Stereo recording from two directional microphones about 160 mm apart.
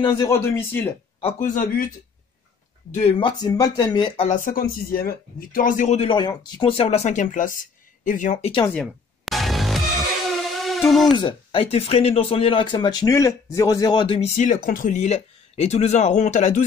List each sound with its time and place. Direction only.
0.0 s speech: 25° left (ahead or behind)
1.4 s speech: 55° left (ahead or behind)
2.9 s speech: 40° left (ahead or behind); by 4.1 s 25° left (ahead or behind)
4.2 s speech: 50° left (ahead or behind)
5.9 s speech: 30° left (ahead or behind); by 8.5 s 50° left (ahead or behind)
8.7 s music: centre (ahead or behind)
11.1 s speech: 30° left (ahead or behind)
14.2 s speech: 50° left (ahead or behind)